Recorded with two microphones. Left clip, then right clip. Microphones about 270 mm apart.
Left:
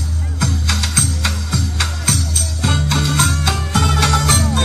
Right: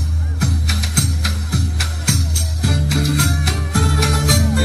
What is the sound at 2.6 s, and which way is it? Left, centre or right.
Music, right.